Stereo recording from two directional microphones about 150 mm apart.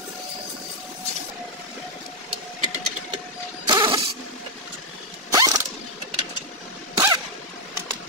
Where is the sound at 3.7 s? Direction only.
30° right (ahead or behind).